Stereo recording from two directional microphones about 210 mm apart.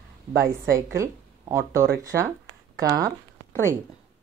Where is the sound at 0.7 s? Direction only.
15° right (ahead or behind).